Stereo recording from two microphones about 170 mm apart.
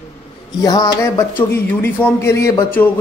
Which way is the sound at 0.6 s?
25° left (ahead or behind).